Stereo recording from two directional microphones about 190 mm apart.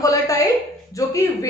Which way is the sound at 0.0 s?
20° left (ahead or behind).